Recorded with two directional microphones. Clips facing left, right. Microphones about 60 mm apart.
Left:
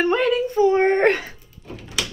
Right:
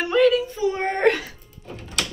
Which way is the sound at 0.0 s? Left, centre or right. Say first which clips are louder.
Right 1 dB; left.